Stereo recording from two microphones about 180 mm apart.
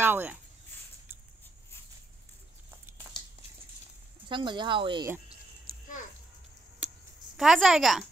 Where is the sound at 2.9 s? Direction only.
10° right (ahead or behind).